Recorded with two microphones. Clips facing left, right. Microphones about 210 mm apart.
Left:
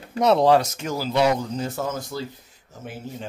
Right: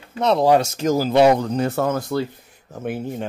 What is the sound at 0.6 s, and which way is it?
Speech, 30° right (ahead or behind).